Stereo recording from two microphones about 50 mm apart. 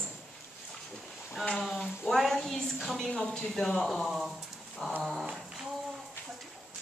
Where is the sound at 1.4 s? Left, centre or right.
Centre.